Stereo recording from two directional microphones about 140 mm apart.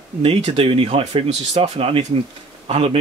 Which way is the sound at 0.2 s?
45° right (ahead or behind).